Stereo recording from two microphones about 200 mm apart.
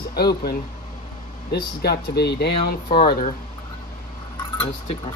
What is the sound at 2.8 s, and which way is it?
Speech, 40° left (ahead or behind).